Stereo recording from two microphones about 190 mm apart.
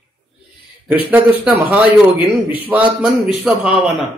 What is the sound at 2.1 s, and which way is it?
Speech, 25° left (ahead or behind).